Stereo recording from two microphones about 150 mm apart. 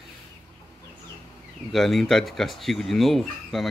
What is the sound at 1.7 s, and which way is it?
Speech, centre (ahead or behind).